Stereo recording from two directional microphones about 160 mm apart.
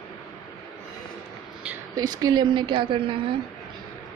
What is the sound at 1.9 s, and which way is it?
A woman's voice, 25° right (ahead or behind).